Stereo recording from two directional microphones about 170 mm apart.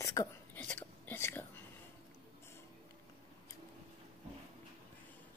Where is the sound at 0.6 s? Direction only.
10° left (ahead or behind).